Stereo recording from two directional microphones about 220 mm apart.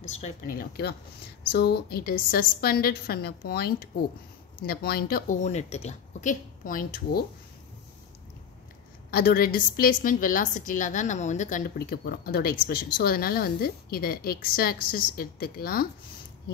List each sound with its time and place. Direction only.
0.2 s a woman's voice: 40° left (ahead or behind)
9.1 s a woman's voice: 45° left (ahead or behind)